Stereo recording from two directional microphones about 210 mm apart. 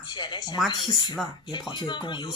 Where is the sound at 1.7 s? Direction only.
20° left (ahead or behind).